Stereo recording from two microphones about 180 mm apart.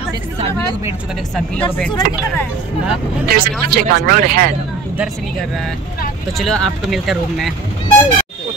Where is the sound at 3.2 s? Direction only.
55° right (ahead or behind).